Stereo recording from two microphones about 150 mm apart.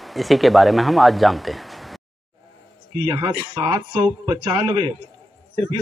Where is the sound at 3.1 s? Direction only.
30° right (ahead or behind).